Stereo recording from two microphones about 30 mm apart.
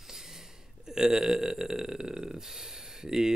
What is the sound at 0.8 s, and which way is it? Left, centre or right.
Speech, centre.